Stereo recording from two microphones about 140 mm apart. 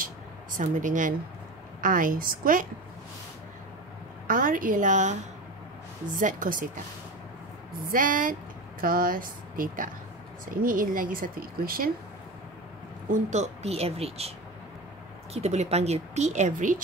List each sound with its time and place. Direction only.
0.6 s a woman's voice: 70° right (ahead or behind)
1.8 s speech: 80° right
4.3 s a woman's voice: 80° right; by 5.1 s 65° right (ahead or behind)
6.1 s a woman's voice: 75° right (ahead or behind)
7.8 s a woman's voice: 75° right (ahead or behind)
8.8 s speech: 90° right
13.1 s speech: 55° right (ahead or behind)
15.3 s speech: 50° right (ahead or behind)